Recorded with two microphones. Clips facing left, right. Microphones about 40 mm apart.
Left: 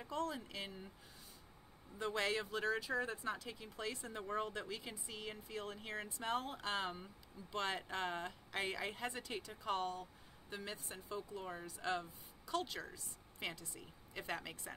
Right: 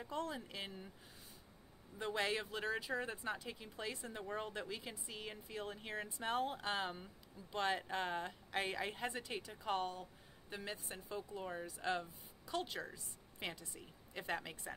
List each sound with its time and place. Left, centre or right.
0.1 s speech: right
2.0 s speech: centre
4.2 s speech: centre
4.5 s speech: centre
6.8 s a woman's voice: centre